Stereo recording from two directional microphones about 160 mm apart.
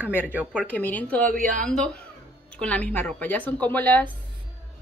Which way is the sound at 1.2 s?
60° right (ahead or behind).